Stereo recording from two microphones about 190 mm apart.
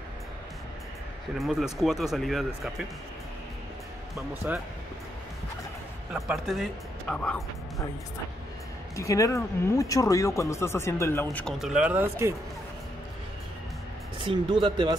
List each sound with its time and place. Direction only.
1.4 s speech: centre (ahead or behind)
4.5 s speech: 10° right (ahead or behind)
6.1 s speech: centre (ahead or behind)
8.9 s speech: 15° left (ahead or behind)
11.2 s speech: centre (ahead or behind)
14.2 s speech: 25° right (ahead or behind)